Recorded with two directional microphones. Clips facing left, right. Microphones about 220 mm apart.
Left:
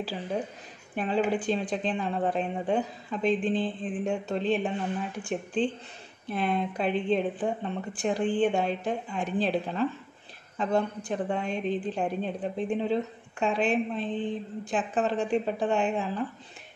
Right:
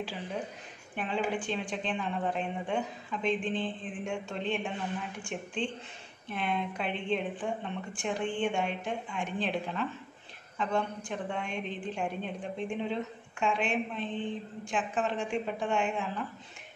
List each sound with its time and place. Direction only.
0.9 s a woman's voice: 35° left (ahead or behind)